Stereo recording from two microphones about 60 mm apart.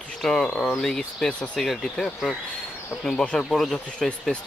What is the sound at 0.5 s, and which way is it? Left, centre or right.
Speech, left.